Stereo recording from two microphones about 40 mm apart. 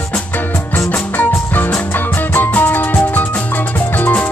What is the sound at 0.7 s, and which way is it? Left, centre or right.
Music, left.